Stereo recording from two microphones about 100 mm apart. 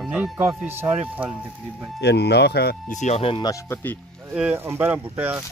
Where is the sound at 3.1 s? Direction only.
75° left (ahead or behind).